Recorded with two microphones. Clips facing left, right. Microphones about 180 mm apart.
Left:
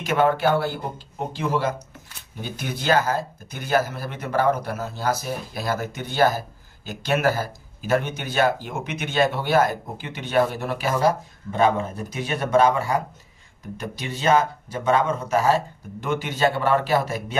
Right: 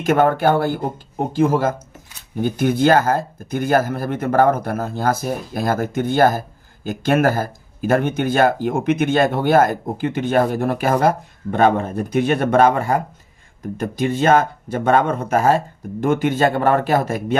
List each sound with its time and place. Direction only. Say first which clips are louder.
0.0 s speech: right 4 dB; 50° right (ahead or behind)